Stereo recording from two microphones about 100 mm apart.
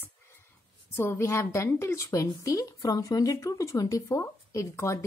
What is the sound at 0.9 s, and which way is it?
A woman's voice, 25° left (ahead or behind).